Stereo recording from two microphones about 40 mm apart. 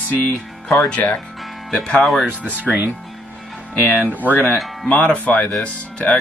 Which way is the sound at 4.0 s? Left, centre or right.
Right.